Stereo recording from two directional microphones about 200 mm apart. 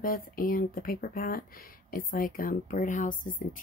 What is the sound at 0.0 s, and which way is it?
Speech, 45° left (ahead or behind).